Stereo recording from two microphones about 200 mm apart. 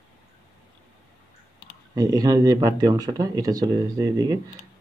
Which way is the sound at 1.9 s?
20° right (ahead or behind).